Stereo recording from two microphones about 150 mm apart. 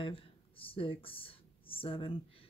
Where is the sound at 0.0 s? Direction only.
35° left (ahead or behind).